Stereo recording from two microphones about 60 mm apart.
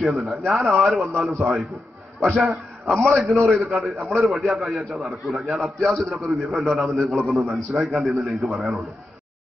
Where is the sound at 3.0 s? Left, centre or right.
Centre.